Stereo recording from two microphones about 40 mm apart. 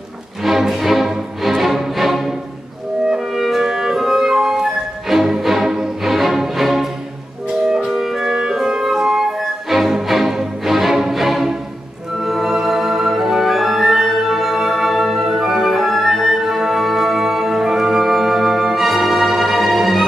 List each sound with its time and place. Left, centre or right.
0.4 s music: centre
3.3 s music: centre
15.2 s music: centre
15.5 s music: centre